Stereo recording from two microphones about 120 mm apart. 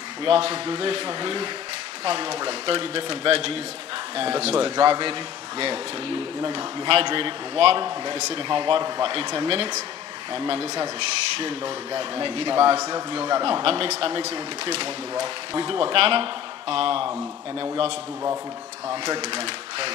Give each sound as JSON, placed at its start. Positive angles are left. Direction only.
{"t": 0.2, "sound": "speech", "side_deg": -50}
{"t": 2.6, "sound": "speech", "side_deg": -50}
{"t": 4.8, "sound": "speech", "side_deg": -45}
{"t": 9.5, "sound": "speech", "side_deg": -45}
{"t": 12.7, "sound": "a man's voice", "side_deg": -25}
{"t": 13.3, "sound": "speech", "side_deg": -50}
{"t": 19.3, "sound": "speech", "side_deg": -50}